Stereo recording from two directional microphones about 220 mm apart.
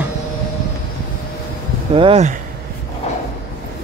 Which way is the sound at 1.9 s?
25° right (ahead or behind).